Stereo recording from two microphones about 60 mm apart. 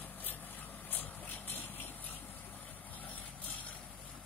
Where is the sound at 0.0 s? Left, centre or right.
Left.